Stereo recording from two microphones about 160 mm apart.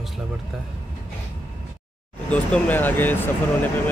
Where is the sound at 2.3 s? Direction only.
10° left (ahead or behind).